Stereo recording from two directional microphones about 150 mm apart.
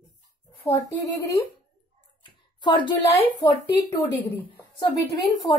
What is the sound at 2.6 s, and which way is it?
Speech, 30° left (ahead or behind).